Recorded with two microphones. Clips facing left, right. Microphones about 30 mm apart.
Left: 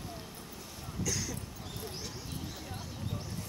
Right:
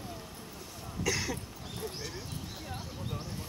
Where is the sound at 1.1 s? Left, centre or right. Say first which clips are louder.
Right 5 dB; right.